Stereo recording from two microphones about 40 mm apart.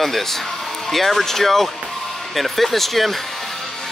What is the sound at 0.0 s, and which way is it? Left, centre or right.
Speech, centre.